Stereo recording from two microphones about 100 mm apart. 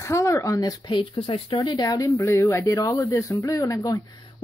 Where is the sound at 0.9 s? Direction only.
55° left (ahead or behind); by 4.2 s 35° left (ahead or behind).